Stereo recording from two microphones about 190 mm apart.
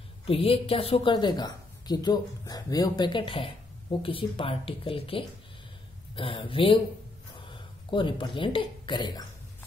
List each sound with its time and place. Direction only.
0.3 s a woman's voice: 30° left (ahead or behind)
7.9 s a woman's voice: 25° left (ahead or behind)